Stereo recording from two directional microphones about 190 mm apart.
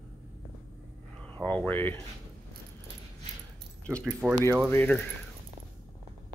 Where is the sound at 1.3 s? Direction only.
10° left (ahead or behind).